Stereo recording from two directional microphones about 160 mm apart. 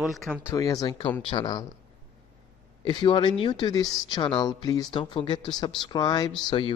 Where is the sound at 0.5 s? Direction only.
20° left (ahead or behind).